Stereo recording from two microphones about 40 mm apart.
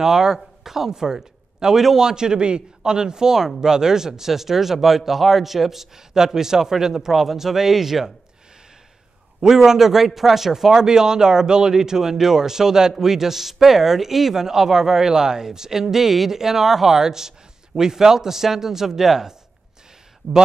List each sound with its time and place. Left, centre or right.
0.0 s a man's voice: centre
9.4 s a man's voice: centre